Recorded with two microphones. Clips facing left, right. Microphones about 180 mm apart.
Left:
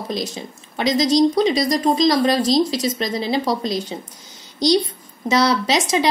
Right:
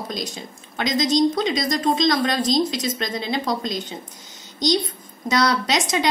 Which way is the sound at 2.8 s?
30° left (ahead or behind).